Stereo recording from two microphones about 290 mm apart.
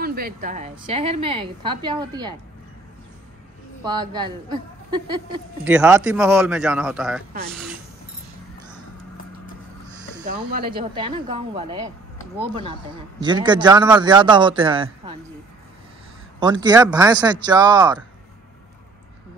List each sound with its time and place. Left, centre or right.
0.0 s a woman's voice: right; by 2.3 s centre
3.8 s speech: centre
5.7 s a man's voice: centre
11.0 s speech: centre
13.2 s speech: centre
16.3 s speech: centre